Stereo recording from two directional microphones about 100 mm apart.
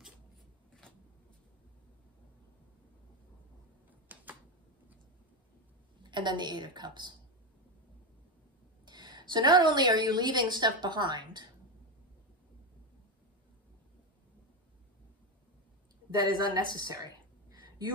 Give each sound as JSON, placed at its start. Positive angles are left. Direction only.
{"t": 4.1, "sound": "typing", "side_deg": -15}
{"t": 6.0, "sound": "a woman's voice", "side_deg": -50}
{"t": 8.8, "sound": "a woman's voice", "side_deg": -45}
{"t": 16.1, "sound": "a sound", "side_deg": -45}